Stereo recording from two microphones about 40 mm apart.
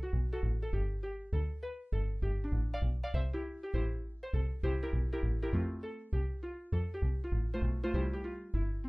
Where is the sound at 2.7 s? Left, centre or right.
Centre.